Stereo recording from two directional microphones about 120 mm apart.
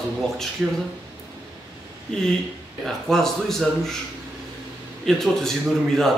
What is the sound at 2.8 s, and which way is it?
Speech, 5° left (ahead or behind).